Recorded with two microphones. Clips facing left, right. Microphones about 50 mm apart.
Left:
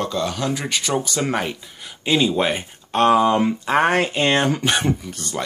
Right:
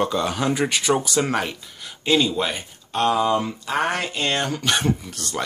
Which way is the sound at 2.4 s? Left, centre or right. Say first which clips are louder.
Left 4 dB; left.